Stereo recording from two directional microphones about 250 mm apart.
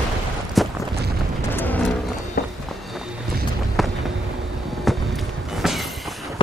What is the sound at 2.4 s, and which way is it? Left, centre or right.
Run, left.